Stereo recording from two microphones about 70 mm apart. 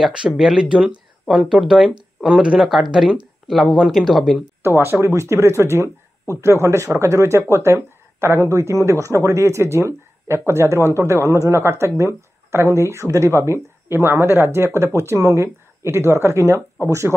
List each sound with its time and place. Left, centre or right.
0.2 s speech: centre
4.6 s speech: right